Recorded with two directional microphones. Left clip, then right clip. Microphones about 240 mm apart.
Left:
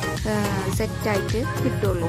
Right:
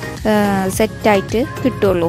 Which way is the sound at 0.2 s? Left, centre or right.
Right.